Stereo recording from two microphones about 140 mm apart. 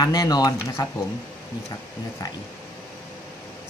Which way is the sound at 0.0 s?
25° left (ahead or behind).